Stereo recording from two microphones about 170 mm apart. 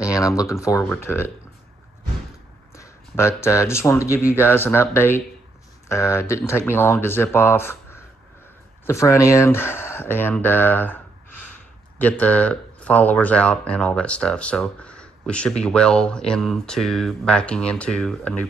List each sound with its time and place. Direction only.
0.0 s speech: 20° left (ahead or behind)
2.7 s speech: 15° left (ahead or behind)
12.0 s speech: 10° left (ahead or behind)